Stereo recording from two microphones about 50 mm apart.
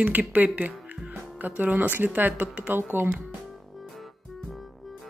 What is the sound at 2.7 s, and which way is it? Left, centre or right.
Speech, right.